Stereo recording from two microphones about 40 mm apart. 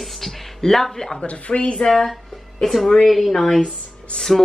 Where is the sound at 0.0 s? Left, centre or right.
Centre.